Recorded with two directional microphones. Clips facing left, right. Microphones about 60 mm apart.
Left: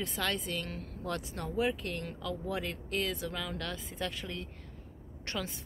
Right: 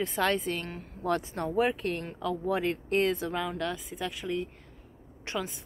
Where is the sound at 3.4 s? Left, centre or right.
Centre.